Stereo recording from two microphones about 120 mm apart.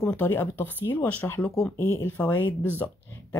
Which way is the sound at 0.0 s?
20° left (ahead or behind).